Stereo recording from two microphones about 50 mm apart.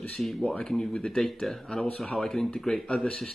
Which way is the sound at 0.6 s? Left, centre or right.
Centre.